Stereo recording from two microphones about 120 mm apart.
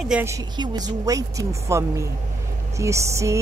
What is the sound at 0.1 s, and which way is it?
Speech, 10° right (ahead or behind).